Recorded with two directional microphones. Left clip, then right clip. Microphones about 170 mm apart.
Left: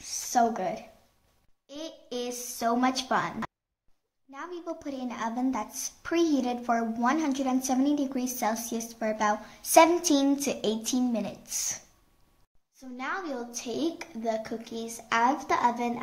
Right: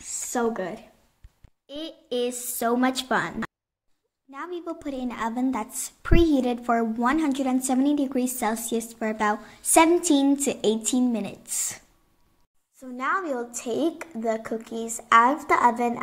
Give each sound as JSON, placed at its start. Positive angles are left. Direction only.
{"t": 0.3, "sound": "a woman's voice", "side_deg": -15}
{"t": 12.9, "sound": "a woman's voice", "side_deg": -20}
{"t": 15.0, "sound": "a woman's voice", "side_deg": -20}